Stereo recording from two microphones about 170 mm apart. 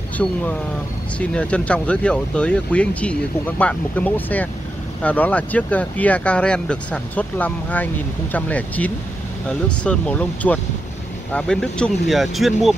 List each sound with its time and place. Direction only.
0.2 s speech: 10° left (ahead or behind)